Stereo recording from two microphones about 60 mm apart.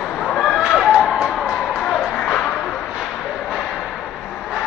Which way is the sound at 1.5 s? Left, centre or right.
Centre.